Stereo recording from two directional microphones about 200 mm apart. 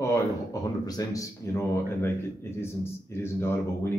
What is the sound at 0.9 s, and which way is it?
Speech, 15° left (ahead or behind).